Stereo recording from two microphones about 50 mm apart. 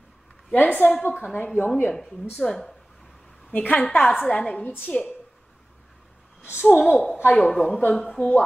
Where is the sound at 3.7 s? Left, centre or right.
Left.